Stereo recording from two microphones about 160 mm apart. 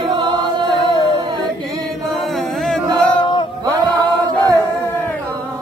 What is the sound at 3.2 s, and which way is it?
Male singing, 30° left (ahead or behind).